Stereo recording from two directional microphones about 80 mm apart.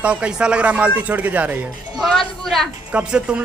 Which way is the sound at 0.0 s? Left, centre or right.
Centre.